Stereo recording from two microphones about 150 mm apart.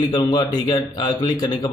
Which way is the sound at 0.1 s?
25° left (ahead or behind).